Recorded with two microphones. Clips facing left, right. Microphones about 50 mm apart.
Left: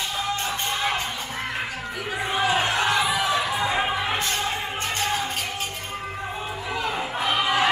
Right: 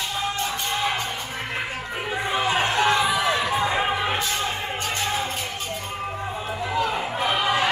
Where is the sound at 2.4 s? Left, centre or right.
Right.